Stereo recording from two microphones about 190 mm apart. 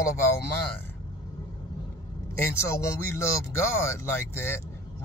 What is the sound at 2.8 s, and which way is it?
Speech, 15° left (ahead or behind).